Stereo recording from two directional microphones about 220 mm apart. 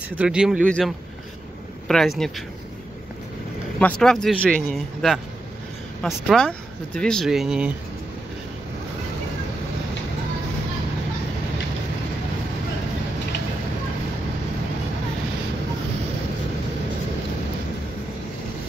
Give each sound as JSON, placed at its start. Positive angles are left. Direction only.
{"t": 0.2, "sound": "speech", "side_deg": -5}
{"t": 3.8, "sound": "speech", "side_deg": 0}